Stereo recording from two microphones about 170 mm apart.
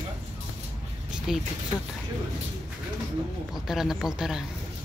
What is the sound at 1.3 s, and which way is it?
Speech, 5° right (ahead or behind).